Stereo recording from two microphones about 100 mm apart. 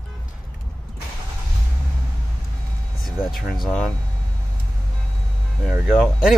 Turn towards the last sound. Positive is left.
turn(degrees=-5)  # may be behind; listen again after turning